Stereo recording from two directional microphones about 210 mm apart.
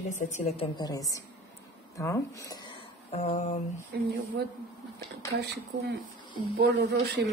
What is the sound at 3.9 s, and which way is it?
Speech, 50° right (ahead or behind).